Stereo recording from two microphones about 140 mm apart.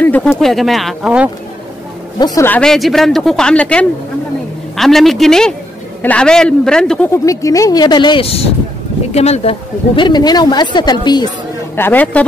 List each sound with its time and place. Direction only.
0.0 s speech: 10° left (ahead or behind); by 1.3 s 5° right (ahead or behind)
2.1 s a man's voice: 30° left (ahead or behind)
2.4 s speech: 10° left (ahead or behind)
7.2 s speech: 25° left (ahead or behind)
11.7 s speech: 15° left (ahead or behind)